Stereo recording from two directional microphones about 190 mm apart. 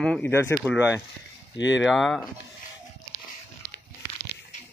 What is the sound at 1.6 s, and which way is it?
Speech, 75° left (ahead or behind).